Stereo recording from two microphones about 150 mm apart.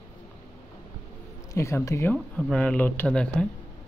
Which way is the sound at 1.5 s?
20° left (ahead or behind).